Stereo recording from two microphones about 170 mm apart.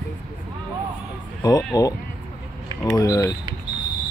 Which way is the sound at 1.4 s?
20° left (ahead or behind).